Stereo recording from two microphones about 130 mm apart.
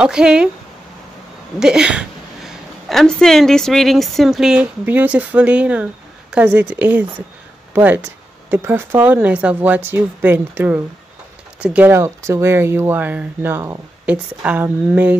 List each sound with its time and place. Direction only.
0.0 s speech: 5° right (ahead or behind)
1.6 s a woman's voice: 5° right (ahead or behind)